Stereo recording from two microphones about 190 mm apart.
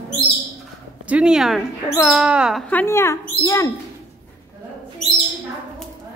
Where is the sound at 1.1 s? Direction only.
5° right (ahead or behind).